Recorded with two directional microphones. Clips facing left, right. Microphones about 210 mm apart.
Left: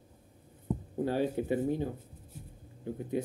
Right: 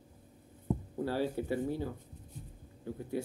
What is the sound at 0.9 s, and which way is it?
Speech, 20° left (ahead or behind).